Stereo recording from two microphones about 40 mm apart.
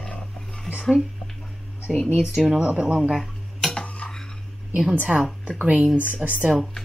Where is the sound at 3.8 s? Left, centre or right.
Left.